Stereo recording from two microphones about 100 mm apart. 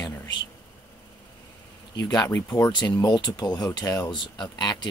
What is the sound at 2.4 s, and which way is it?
Speech, 40° left (ahead or behind).